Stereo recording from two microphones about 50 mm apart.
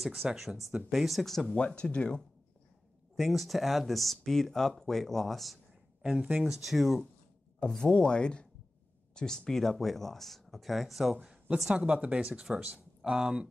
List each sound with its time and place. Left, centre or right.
0.0 s speech: centre
1.6 s speech: centre
3.2 s speech: centre
6.2 s speech: right
6.5 s speech: centre
7.6 s speech: centre
11.7 s speech: right